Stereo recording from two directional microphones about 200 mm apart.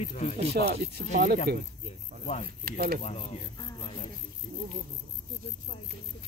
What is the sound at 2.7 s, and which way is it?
Speech, 45° right (ahead or behind).